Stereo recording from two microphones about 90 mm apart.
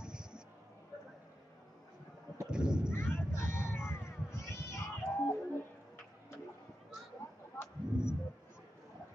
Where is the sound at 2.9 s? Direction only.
25° left (ahead or behind).